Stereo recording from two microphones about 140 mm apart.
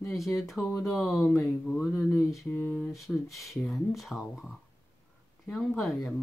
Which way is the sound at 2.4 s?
15° left (ahead or behind).